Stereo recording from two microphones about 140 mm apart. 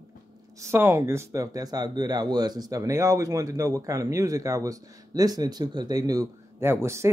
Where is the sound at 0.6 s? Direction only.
20° right (ahead or behind).